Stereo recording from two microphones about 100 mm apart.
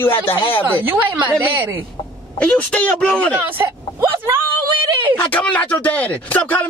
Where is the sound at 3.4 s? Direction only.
25° right (ahead or behind).